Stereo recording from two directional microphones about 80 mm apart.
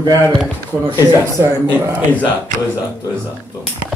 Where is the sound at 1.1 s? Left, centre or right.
Right.